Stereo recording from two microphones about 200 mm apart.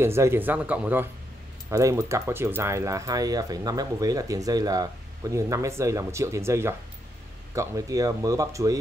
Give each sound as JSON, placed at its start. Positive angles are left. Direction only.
{"t": 0.0, "sound": "speech", "side_deg": -10}